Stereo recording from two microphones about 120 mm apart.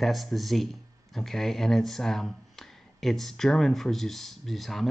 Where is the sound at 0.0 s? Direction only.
Centre (ahead or behind).